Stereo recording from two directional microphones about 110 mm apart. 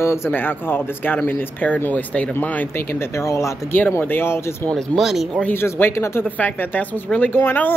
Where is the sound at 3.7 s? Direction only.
15° left (ahead or behind).